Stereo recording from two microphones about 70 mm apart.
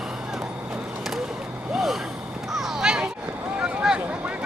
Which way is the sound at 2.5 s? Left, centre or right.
Centre.